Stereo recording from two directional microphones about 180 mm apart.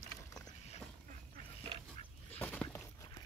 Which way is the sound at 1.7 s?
30° right (ahead or behind).